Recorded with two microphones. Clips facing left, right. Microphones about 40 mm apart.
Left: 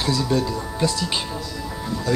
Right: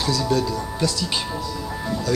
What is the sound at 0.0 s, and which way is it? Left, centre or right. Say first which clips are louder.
Speech: even; left.